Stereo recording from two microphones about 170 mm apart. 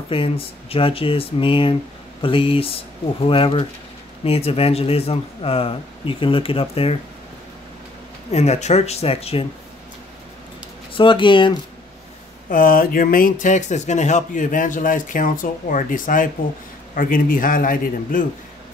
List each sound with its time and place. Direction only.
0.1 s speech: 30° left (ahead or behind)
8.3 s speech: 40° left (ahead or behind)
10.9 s speech: 30° left (ahead or behind)
12.4 s a man's voice: 55° left (ahead or behind)